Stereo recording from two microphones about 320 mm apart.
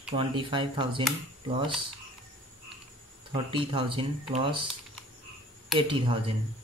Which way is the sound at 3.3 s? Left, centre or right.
Centre.